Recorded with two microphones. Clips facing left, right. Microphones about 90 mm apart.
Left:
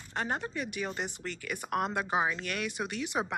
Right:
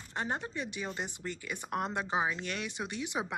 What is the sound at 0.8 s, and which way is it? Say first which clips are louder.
Speech: left 2 dB; 20° left (ahead or behind).